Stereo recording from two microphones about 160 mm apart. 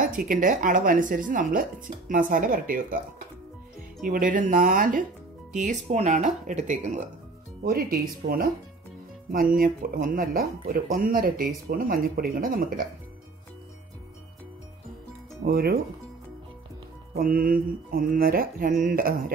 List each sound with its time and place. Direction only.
0.0 s speech: 60° right (ahead or behind)
4.0 s speech: 60° right (ahead or behind)
7.6 s speech: 70° right (ahead or behind)
9.6 s speech: 60° right (ahead or behind)
15.4 s speech: 70° right (ahead or behind)
17.2 s speech: 65° right (ahead or behind)